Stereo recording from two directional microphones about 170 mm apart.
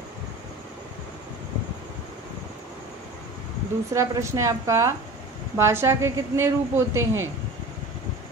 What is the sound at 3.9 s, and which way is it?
Speech, 15° right (ahead or behind).